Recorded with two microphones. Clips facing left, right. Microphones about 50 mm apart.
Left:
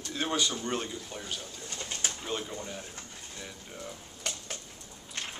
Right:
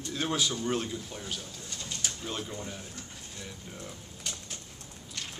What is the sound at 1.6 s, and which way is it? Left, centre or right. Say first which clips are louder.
Pigeon: left 2 dB; left.